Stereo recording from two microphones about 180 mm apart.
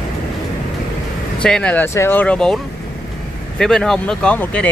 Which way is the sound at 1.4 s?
5° left (ahead or behind).